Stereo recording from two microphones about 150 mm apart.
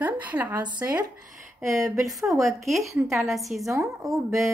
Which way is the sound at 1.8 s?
20° right (ahead or behind).